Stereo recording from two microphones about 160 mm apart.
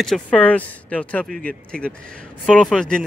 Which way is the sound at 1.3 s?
65° right (ahead or behind).